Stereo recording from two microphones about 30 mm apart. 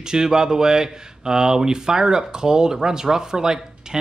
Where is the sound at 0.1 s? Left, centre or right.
Right.